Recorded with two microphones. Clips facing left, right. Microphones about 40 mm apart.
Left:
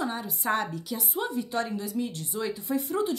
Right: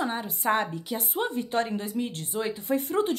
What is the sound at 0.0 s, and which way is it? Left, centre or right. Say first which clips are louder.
Speech: right 2 dB; right.